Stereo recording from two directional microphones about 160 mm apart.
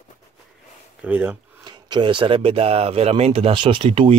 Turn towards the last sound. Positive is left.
turn(degrees=-35)  # may be behind; listen again after turning